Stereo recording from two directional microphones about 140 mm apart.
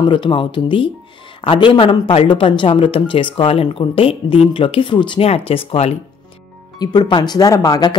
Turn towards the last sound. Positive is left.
turn(degrees=25)  # may be behind; listen again after turning